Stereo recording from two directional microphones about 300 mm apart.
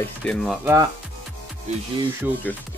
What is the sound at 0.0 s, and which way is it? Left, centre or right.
Speech, centre.